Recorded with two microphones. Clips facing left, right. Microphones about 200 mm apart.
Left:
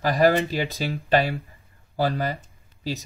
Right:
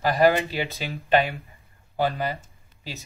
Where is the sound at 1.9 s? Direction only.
40° left (ahead or behind).